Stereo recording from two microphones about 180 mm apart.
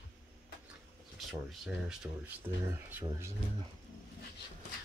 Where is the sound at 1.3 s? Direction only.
Centre (ahead or behind).